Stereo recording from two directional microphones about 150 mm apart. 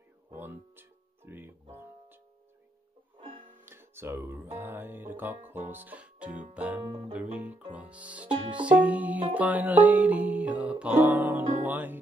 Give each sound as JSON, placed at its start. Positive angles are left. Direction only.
{"t": 0.4, "sound": "music", "side_deg": -15}
{"t": 3.2, "sound": "music", "side_deg": -35}
{"t": 3.6, "sound": "music", "side_deg": -15}
{"t": 6.8, "sound": "music", "side_deg": -25}
{"t": 7.1, "sound": "music", "side_deg": -5}